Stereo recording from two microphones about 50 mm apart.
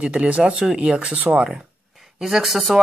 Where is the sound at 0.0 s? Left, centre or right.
Right.